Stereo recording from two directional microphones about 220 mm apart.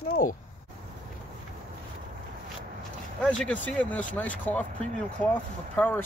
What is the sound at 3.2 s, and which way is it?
Speech, 5° left (ahead or behind).